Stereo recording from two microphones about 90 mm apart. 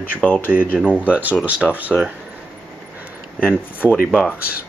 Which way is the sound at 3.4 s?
15° right (ahead or behind).